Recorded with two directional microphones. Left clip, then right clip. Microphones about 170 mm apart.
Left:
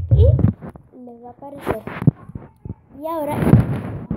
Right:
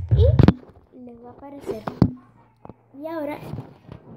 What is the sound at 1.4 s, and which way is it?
Speech, 5° right (ahead or behind).